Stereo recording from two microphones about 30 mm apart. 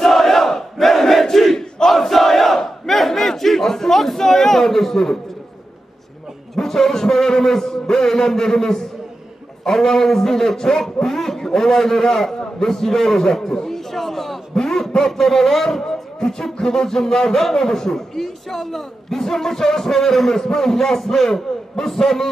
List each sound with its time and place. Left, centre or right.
0.0 s crowd: centre
1.4 s battle cry: centre
1.9 s crowd: centre
2.9 s battle cry: centre
6.5 s a man's voice: centre
14.6 s a sound: centre
15.0 s a man's voice: centre
16.2 s music: left
16.5 s a man's voice: centre